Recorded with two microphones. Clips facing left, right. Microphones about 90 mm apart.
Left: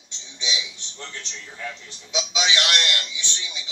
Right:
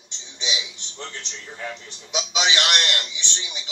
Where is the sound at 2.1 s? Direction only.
20° right (ahead or behind).